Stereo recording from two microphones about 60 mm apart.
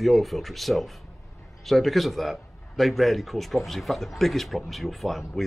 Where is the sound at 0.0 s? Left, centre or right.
Centre.